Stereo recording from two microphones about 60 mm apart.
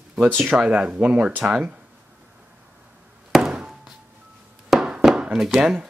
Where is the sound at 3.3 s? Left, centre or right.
Centre.